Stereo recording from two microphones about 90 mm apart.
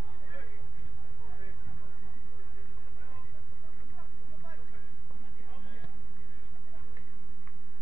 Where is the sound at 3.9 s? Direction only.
55° right (ahead or behind).